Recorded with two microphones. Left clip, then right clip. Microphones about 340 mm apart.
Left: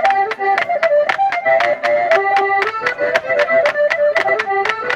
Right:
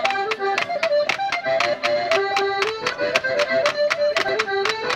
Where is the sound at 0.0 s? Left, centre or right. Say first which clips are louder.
Left 7 dB; left.